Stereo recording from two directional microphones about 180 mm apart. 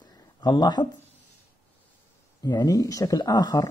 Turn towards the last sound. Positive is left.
turn(degrees=20)  # may be behind; listen again after turning